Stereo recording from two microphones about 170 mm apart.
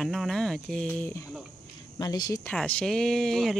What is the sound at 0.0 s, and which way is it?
Speech, centre (ahead or behind).